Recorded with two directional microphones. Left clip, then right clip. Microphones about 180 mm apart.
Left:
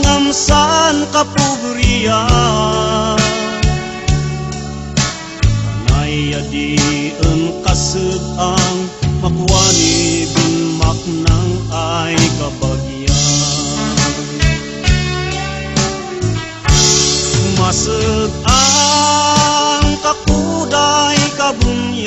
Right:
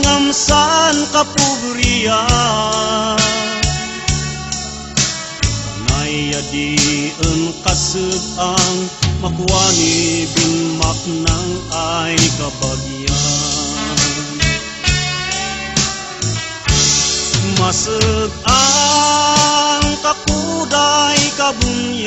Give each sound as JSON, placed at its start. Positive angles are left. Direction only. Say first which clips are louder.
{"t": 0.0, "sound": "music", "louder": "even", "side_deg": -10}
{"t": 1.3, "sound": "music", "louder": "even", "side_deg": 45}
{"t": 1.9, "sound": "music", "louder": "even", "side_deg": -10}
{"t": 4.9, "sound": "music", "louder": "right 1 dB", "side_deg": 45}
{"t": 6.0, "sound": "music", "louder": "even", "side_deg": -10}
{"t": 9.7, "sound": "music", "louder": "left 1 dB", "side_deg": 45}
{"t": 11.8, "sound": "music", "louder": "left 1 dB", "side_deg": -10}
{"t": 13.1, "sound": "music", "louder": "left 2 dB", "side_deg": 45}
{"t": 16.6, "sound": "music", "louder": "left 3 dB", "side_deg": 45}
{"t": 17.6, "sound": "music", "louder": "right 1 dB", "side_deg": -10}